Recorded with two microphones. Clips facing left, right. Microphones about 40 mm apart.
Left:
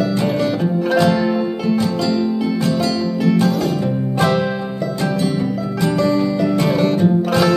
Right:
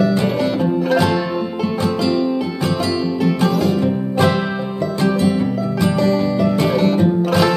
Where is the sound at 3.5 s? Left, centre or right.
Centre.